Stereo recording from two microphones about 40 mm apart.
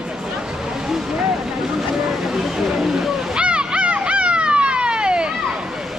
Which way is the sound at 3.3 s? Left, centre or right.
Right.